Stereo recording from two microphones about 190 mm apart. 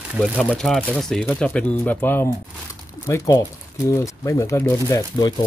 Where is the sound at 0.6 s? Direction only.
5° left (ahead or behind).